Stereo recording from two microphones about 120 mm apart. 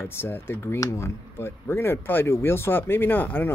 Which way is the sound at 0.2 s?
20° left (ahead or behind).